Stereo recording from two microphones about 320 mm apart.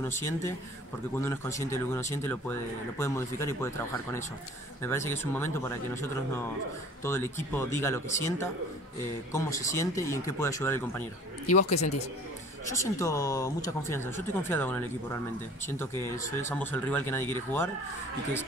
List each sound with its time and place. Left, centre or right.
0.0 s speech: centre
11.5 s speech: left
12.7 s speech: centre